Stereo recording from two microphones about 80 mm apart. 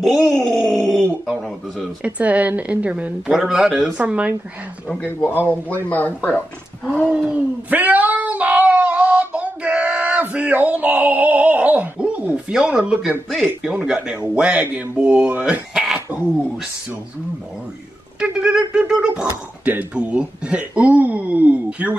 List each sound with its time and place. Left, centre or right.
0.0 s groan: centre
2.0 s speech: centre
3.3 s speech: centre
4.0 s speech: centre
5.0 s speech: left
7.1 s a sound: centre
12.4 s speech: centre
15.7 s throat clearing: centre
18.2 s speech: centre